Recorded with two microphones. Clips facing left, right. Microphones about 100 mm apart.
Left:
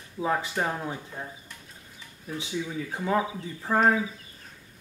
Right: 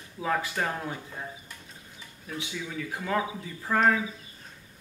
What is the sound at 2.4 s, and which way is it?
Speech, 25° left (ahead or behind).